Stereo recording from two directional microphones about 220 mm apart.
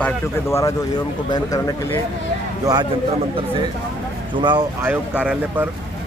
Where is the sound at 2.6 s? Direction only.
15° right (ahead or behind).